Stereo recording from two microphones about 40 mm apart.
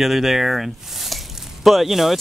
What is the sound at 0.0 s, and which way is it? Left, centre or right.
Speech, centre.